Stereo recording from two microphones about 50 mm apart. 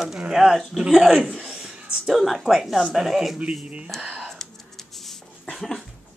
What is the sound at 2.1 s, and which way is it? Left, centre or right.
Speech, centre.